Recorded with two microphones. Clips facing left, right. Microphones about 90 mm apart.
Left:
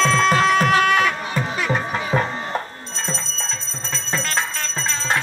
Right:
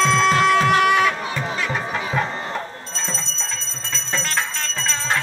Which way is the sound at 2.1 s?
35° left (ahead or behind).